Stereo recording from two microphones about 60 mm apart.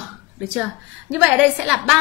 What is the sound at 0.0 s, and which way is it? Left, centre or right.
A woman's voice, centre.